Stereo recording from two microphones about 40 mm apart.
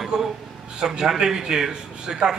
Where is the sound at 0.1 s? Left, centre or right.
Centre.